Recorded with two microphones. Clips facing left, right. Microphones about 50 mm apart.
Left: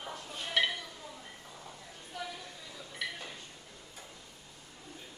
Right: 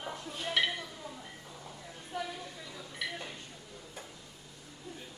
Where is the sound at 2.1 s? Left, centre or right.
Right.